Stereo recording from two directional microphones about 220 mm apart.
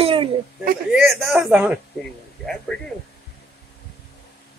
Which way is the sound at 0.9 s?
Centre (ahead or behind).